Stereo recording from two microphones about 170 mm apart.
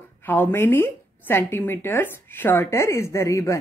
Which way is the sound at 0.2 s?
10° left (ahead or behind).